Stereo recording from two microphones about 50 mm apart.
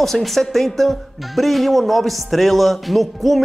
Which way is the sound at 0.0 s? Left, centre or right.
Centre.